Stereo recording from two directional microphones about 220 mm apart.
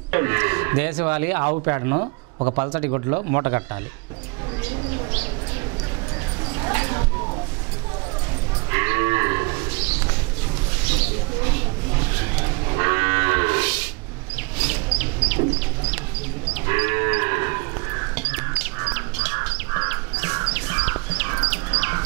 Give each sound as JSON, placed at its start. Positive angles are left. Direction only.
{"t": 0.1, "sound": "speech", "side_deg": -15}
{"t": 2.3, "sound": "speech", "side_deg": -30}
{"t": 6.6, "sound": "a sound", "side_deg": -20}
{"t": 8.6, "sound": "livestock", "side_deg": -15}
{"t": 12.6, "sound": "livestock", "side_deg": -15}
{"t": 14.7, "sound": "bird", "side_deg": -10}
{"t": 16.6, "sound": "livestock", "side_deg": -15}
{"t": 19.7, "sound": "crow", "side_deg": -15}
{"t": 20.5, "sound": "a sound", "side_deg": -10}
{"t": 21.6, "sound": "bird", "side_deg": -10}